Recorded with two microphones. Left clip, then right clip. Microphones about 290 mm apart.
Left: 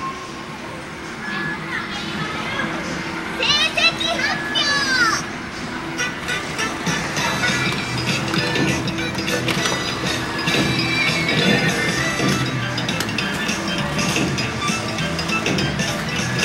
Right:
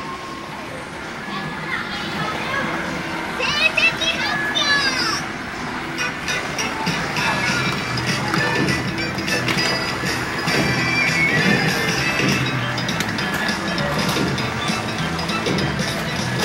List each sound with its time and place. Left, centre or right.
3.4 s children playing: centre
4.6 s children playing: centre
7.6 s music: right
11.1 s music: right